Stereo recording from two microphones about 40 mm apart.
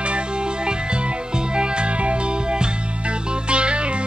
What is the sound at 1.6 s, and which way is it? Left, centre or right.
Music, right.